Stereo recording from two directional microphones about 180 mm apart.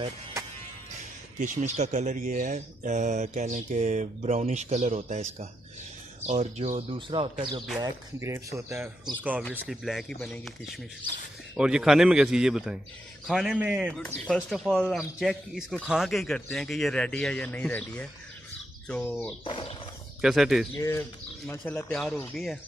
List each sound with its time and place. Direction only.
1.4 s speech: 40° right (ahead or behind)
8.2 s speech: 15° right (ahead or behind)
9.5 s speech: centre (ahead or behind)
19.4 s speech: 30° left (ahead or behind)
20.2 s speech: centre (ahead or behind)
21.5 s speech: 10° left (ahead or behind)